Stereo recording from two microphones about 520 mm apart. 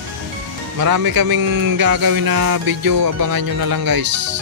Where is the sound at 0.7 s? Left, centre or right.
Right.